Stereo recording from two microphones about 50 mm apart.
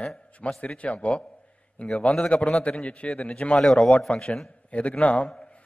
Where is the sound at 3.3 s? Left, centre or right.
Centre.